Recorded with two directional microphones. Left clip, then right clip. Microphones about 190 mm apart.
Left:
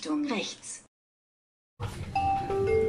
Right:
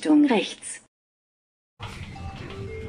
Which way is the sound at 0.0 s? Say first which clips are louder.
Right 11 dB; 40° right (ahead or behind).